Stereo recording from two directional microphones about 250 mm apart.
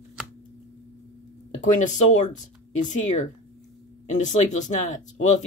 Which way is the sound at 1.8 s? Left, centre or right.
Left.